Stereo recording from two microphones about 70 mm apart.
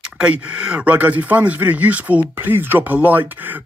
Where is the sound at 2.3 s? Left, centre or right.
Right.